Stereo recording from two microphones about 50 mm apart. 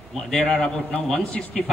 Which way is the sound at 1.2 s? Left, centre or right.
Left.